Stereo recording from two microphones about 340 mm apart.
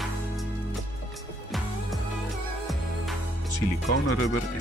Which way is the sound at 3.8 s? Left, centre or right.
Left.